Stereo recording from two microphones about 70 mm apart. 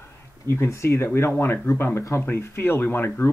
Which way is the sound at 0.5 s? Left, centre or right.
Left.